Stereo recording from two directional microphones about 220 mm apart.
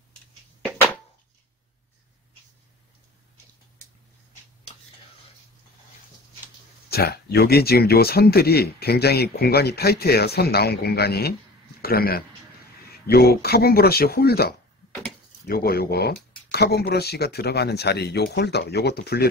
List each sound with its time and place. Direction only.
6.9 s speech: 45° left (ahead or behind)